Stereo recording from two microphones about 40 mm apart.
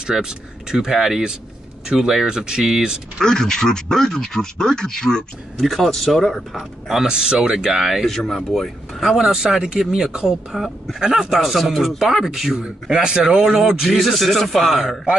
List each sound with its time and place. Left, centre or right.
0.0 s speech: centre
3.2 s speech: centre
5.6 s speech: centre
6.5 s speech: centre
8.5 s speech: centre
9.1 s speech: centre
11.4 s speech: centre